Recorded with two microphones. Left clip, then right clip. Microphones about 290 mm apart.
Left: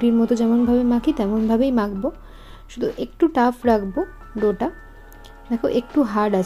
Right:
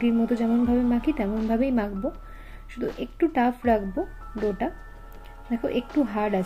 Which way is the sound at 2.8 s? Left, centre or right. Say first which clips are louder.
Left 6 dB; centre.